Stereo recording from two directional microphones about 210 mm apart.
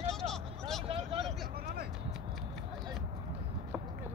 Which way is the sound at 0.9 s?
25° right (ahead or behind).